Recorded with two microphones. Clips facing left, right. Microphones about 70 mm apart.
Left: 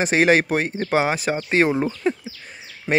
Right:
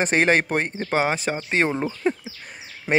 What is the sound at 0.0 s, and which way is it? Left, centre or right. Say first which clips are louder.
Speech: left 2 dB; centre.